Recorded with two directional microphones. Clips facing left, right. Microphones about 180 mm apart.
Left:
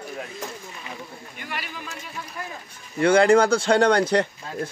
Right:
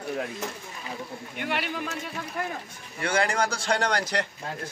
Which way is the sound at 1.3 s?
65° right (ahead or behind).